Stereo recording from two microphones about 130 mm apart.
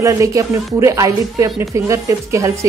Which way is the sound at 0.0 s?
25° right (ahead or behind).